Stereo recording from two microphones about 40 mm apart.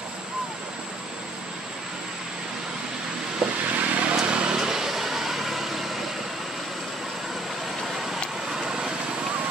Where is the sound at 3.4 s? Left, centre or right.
Right.